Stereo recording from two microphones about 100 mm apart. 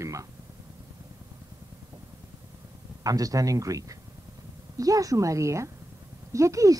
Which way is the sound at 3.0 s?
35° right (ahead or behind).